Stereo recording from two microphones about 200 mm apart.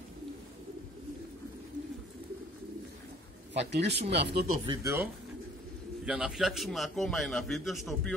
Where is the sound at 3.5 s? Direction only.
60° right (ahead or behind).